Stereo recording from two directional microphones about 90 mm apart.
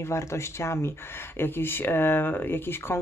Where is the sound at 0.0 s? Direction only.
30° left (ahead or behind).